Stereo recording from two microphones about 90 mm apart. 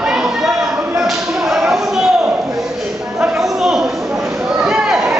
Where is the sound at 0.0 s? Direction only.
10° right (ahead or behind).